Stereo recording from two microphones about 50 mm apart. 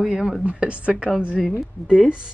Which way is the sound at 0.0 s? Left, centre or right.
Centre.